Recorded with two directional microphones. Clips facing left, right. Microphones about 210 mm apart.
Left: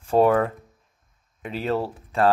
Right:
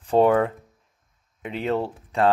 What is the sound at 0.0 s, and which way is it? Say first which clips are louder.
Speech: even; 20° right (ahead or behind).